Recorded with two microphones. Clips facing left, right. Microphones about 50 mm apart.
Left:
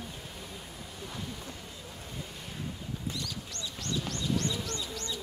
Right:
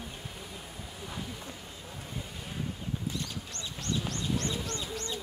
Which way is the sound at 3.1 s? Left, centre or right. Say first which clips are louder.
Right 1 dB; right.